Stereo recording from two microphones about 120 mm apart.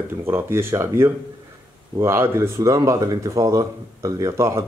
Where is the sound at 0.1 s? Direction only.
20° right (ahead or behind).